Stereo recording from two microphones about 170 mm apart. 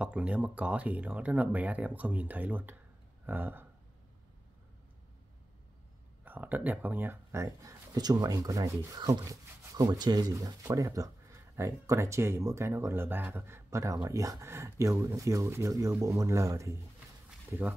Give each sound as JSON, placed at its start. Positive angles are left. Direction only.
{"t": 0.0, "sound": "speech", "side_deg": -5}
{"t": 6.2, "sound": "speech", "side_deg": -10}